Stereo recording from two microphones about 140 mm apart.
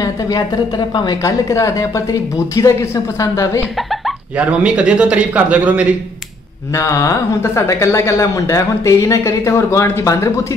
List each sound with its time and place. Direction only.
0.0 s speech: 25° left (ahead or behind)
3.9 s speech: 5° right (ahead or behind)
6.7 s speech: 20° left (ahead or behind)